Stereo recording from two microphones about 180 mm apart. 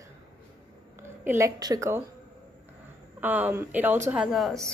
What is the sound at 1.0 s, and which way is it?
A woman's voice, 15° right (ahead or behind).